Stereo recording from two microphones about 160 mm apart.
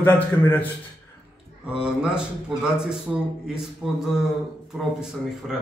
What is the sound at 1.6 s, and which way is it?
A man's voice, 5° right (ahead or behind).